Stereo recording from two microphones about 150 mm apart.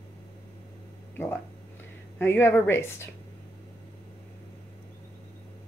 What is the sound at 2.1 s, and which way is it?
Speech, 15° left (ahead or behind).